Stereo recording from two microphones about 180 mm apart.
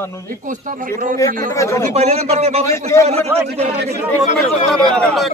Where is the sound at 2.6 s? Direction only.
15° left (ahead or behind).